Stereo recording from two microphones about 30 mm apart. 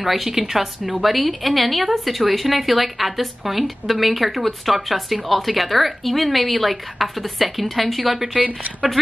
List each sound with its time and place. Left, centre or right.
0.0 s a woman's voice: centre
8.4 s speech: right